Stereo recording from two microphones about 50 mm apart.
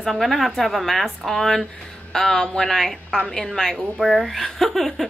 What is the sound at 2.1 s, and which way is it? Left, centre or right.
Speech, centre.